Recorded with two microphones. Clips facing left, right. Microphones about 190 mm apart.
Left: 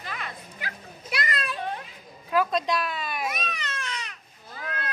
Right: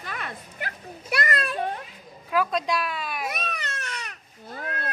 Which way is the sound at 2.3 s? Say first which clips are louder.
Even; 5° right (ahead or behind).